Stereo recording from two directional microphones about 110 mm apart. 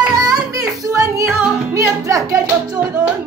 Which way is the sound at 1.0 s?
25° right (ahead or behind).